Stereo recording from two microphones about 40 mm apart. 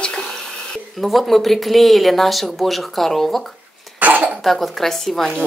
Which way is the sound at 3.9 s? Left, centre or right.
Right.